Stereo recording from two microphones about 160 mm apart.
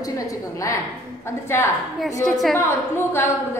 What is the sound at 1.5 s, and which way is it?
Speech, 15° left (ahead or behind).